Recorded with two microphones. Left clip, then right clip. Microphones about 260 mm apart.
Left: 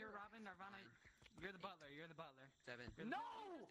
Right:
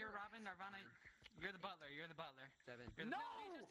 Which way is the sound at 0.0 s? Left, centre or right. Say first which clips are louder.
Right 4 dB; centre.